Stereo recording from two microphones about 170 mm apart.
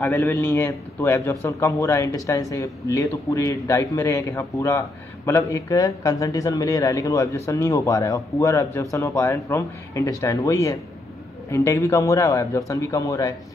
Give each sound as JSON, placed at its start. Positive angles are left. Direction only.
{"t": 0.0, "sound": "a man's voice", "side_deg": 10}